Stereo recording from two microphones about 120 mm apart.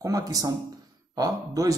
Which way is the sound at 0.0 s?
30° right (ahead or behind).